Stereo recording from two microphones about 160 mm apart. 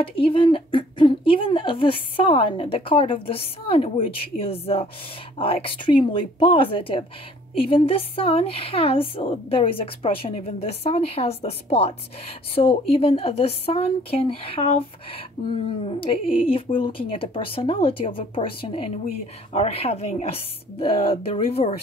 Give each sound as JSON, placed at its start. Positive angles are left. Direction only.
{"t": 0.0, "sound": "a woman's voice", "side_deg": 35}